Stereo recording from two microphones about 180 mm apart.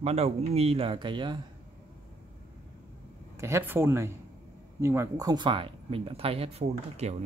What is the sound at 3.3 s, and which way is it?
Speech, 15° right (ahead or behind).